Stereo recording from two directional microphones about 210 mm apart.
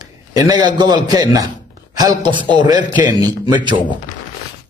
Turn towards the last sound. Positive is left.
turn(degrees=-20)  # may be behind; listen again after turning